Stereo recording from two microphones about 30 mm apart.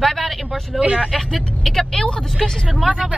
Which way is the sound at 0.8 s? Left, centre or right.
Right.